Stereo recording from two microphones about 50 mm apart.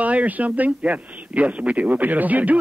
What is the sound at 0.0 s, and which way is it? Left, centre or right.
A man's voice, right.